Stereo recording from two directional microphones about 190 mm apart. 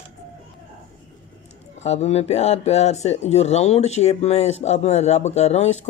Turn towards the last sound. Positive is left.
turn(degrees=35)  # may be behind; listen again after turning